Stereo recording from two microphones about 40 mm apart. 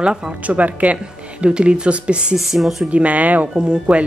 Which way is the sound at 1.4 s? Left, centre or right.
Right.